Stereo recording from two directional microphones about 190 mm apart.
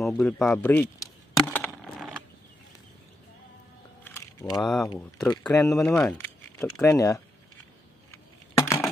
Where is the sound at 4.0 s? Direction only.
15° left (ahead or behind).